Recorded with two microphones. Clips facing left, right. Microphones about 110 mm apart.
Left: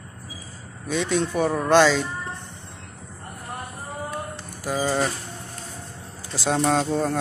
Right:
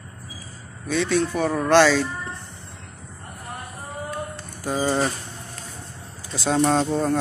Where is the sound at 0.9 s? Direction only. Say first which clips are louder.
Right 2 dB; 15° left (ahead or behind).